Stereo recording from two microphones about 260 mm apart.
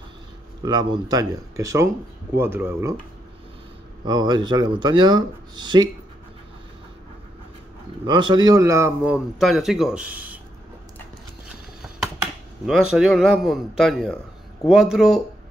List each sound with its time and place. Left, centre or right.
0.6 s speech: centre
4.0 s speech: centre
8.0 s speech: centre
12.9 s speech: centre